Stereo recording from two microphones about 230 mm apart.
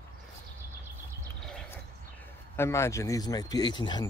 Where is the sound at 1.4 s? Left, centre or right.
Centre.